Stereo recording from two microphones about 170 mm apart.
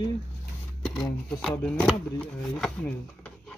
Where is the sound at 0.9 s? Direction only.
5° left (ahead or behind).